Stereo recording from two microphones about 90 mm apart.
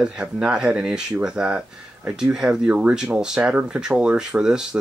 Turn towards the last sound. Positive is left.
turn(degrees=-10)  # may be behind; listen again after turning